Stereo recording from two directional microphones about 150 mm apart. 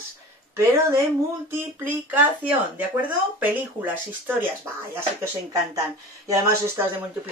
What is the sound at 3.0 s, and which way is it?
Speech, 10° right (ahead or behind).